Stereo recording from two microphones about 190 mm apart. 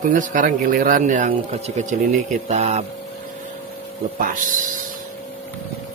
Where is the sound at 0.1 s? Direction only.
45° right (ahead or behind).